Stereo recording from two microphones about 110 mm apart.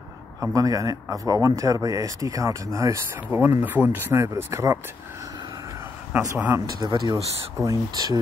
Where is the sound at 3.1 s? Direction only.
20° right (ahead or behind).